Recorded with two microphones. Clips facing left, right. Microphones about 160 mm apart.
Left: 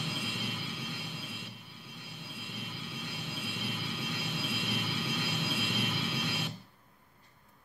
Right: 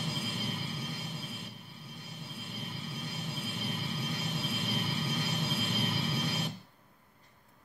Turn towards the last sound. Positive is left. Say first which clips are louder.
# right 2 dB
turn(degrees=-40)  # may be behind; listen again after turning